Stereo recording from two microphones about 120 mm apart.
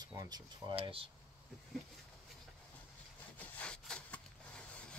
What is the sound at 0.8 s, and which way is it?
Speech, 50° right (ahead or behind).